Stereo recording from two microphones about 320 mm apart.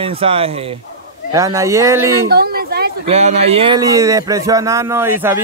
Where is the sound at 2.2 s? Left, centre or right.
Right.